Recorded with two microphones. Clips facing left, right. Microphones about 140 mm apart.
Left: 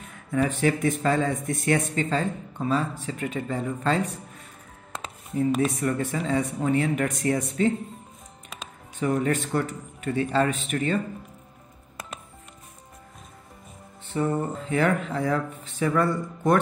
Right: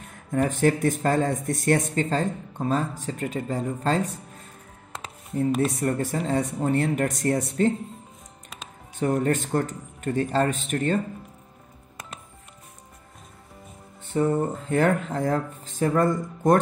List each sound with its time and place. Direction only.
0.3 s speech: 45° right (ahead or behind)
5.4 s speech: 40° right (ahead or behind)
9.0 s a man's voice: 40° right (ahead or behind)
14.1 s a man's voice: 50° right (ahead or behind)